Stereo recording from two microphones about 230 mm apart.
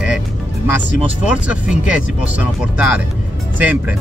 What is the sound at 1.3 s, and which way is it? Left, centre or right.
Speech, centre.